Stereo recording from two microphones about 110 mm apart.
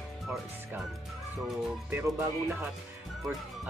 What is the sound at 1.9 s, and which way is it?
Speech, 25° right (ahead or behind).